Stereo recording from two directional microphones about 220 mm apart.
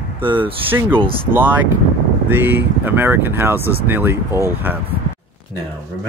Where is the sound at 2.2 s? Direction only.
10° right (ahead or behind).